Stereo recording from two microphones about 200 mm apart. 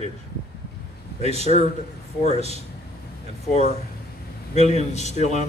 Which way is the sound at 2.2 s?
35° left (ahead or behind).